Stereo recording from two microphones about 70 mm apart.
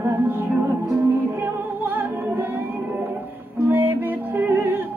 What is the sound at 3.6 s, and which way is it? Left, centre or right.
Music, right.